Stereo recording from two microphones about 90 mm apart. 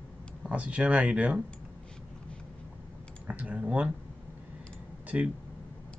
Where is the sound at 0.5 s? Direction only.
15° right (ahead or behind).